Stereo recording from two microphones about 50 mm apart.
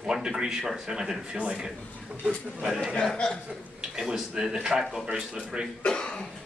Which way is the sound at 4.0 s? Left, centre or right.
Centre.